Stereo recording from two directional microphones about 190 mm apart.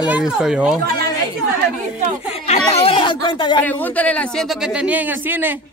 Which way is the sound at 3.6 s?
10° left (ahead or behind).